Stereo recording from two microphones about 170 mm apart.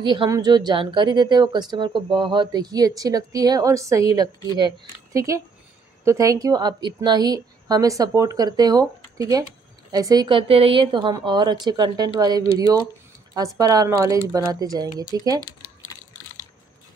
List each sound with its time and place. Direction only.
0.0 s speech: 30° right (ahead or behind)